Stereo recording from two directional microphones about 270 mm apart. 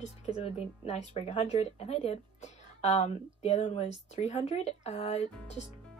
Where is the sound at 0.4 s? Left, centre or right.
Left.